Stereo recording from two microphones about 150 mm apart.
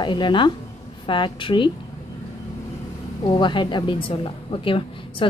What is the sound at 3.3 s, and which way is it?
A woman's voice, 30° left (ahead or behind).